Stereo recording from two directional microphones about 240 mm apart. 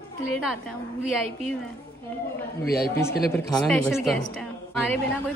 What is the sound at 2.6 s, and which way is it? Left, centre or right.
Speech, left.